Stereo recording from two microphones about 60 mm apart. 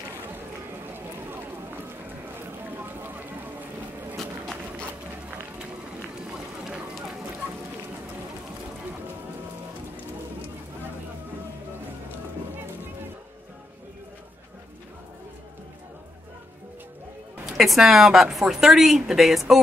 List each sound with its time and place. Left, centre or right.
0.9 s run: right
2.8 s a sound: right
6.1 s run: centre
17.6 s a woman's voice: centre